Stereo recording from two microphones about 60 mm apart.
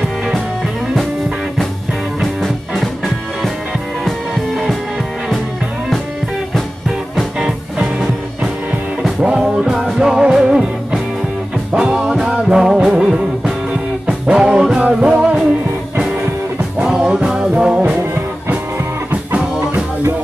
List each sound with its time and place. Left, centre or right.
2.1 s music: centre
7.4 s music: centre
9.4 s music: centre
16.5 s music: right
17.7 s music: right